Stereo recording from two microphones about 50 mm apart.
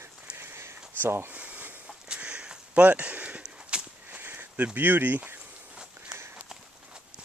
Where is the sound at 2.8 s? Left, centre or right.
Right.